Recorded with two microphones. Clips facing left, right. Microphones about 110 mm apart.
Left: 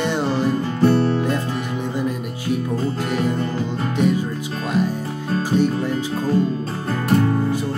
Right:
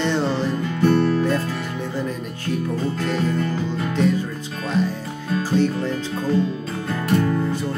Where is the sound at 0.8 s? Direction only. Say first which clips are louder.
Left 1 dB; 35° left (ahead or behind).